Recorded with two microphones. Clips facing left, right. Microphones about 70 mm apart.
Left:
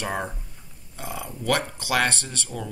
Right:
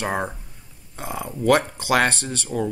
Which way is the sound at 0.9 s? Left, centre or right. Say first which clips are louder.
Right 4 dB; right.